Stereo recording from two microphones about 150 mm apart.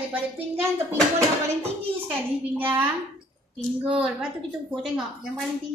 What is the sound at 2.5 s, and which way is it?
Speech, 15° right (ahead or behind).